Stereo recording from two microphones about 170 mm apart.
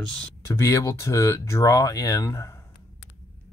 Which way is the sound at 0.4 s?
15° left (ahead or behind).